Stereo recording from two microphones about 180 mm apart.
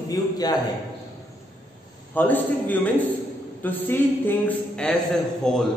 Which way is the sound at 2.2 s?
10° left (ahead or behind).